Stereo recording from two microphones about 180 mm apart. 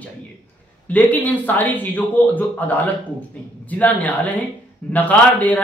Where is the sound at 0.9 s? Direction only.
10° left (ahead or behind).